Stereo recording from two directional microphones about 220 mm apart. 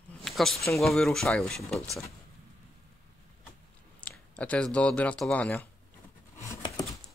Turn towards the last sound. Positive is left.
turn(degrees=15)  # may be behind; listen again after turning